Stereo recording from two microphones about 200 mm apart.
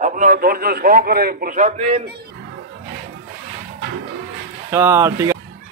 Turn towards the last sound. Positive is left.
turn(degrees=-15)  # may be behind; listen again after turning